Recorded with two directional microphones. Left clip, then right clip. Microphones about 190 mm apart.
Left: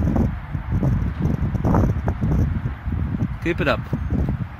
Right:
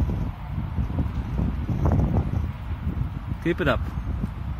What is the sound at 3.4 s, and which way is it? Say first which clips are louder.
Speech: left 2 dB; 15° left (ahead or behind).